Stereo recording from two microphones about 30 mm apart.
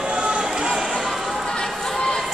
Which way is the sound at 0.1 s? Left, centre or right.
Right.